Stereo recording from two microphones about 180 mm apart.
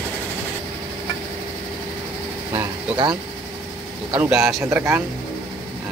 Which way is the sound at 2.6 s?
25° right (ahead or behind).